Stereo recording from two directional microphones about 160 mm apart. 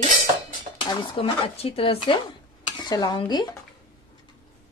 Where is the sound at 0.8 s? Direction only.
30° left (ahead or behind).